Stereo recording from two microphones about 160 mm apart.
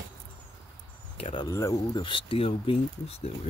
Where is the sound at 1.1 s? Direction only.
40° left (ahead or behind).